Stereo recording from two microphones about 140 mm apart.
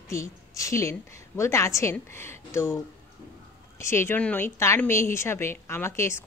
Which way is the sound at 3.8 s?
20° left (ahead or behind).